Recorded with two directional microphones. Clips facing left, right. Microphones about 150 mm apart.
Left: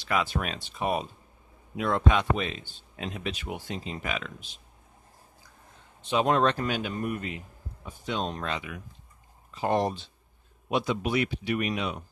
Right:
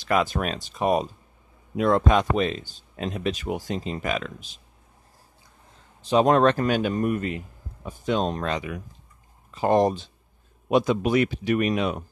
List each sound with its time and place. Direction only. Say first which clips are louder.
0.0 s speech: right 5 dB; 45° right (ahead or behind)
6.0 s speech: right 6 dB; 40° right (ahead or behind)